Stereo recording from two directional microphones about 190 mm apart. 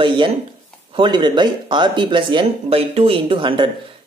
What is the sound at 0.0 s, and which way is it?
Speech, 25° right (ahead or behind).